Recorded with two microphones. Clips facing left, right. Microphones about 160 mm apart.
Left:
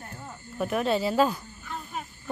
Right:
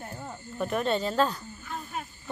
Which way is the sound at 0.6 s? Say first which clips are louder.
Left 2 dB; 5° left (ahead or behind).